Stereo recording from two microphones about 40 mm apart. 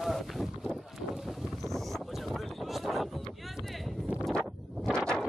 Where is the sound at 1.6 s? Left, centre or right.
Centre.